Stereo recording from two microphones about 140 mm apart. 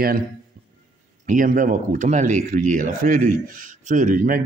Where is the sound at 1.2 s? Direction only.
70° right (ahead or behind).